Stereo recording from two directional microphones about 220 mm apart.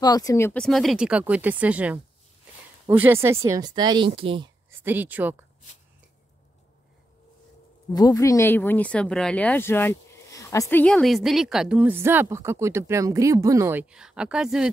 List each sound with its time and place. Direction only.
0.0 s speech: 15° left (ahead or behind); by 4.5 s 25° right (ahead or behind)
4.6 s speech: 10° right (ahead or behind)
7.9 s speech: 15° left (ahead or behind); by 14.7 s 5° right (ahead or behind)